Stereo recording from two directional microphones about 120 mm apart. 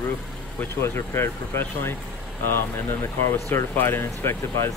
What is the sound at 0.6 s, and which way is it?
Speech, 20° left (ahead or behind).